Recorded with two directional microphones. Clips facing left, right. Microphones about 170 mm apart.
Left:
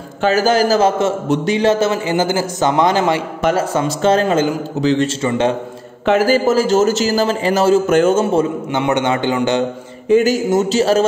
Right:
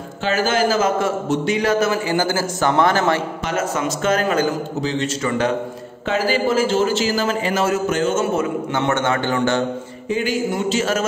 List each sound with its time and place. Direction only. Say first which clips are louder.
0.2 s a man's voice: left 5 dB; 40° left (ahead or behind); by 3.2 s 15° left (ahead or behind)
3.5 s a man's voice: left 4 dB; 30° left (ahead or behind)
6.1 s a man's voice: left 4 dB; 45° left (ahead or behind)
8.7 s a man's voice: left 4 dB; 15° left (ahead or behind)
10.0 s a man's voice: left 8 dB; 45° left (ahead or behind)